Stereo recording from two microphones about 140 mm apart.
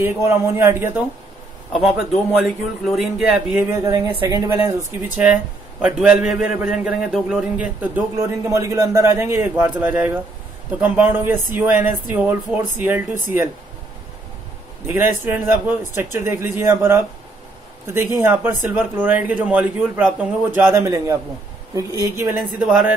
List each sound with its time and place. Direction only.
0.0 s speech: 20° right (ahead or behind)
1.7 s speech: centre (ahead or behind)
5.2 s speech: 5° right (ahead or behind)
8.5 s a man's voice: 20° right (ahead or behind)
14.9 s a man's voice: 15° right (ahead or behind)
22.4 s speech: 5° right (ahead or behind)